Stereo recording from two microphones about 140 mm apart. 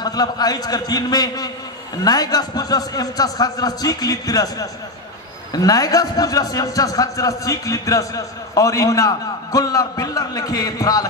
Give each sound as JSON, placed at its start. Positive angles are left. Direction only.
{"t": 0.0, "sound": "speech", "side_deg": 30}